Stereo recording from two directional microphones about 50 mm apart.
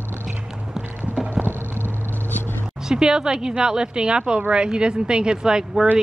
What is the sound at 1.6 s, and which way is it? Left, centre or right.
Vehicle, left.